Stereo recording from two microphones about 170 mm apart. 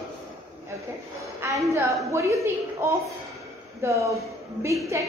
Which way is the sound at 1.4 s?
15° right (ahead or behind).